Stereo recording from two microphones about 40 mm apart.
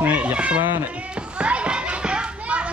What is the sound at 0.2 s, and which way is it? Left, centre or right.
Speech, right.